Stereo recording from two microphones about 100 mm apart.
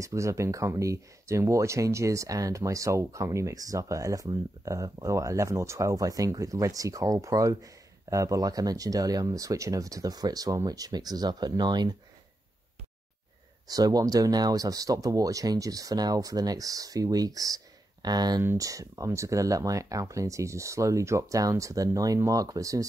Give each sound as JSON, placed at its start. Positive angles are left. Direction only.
{"t": 0.0, "sound": "speech", "side_deg": -30}
{"t": 13.7, "sound": "speech", "side_deg": -40}
{"t": 18.4, "sound": "speech", "side_deg": -30}